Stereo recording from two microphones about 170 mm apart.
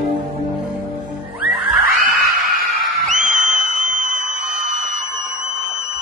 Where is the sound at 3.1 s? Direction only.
50° right (ahead or behind).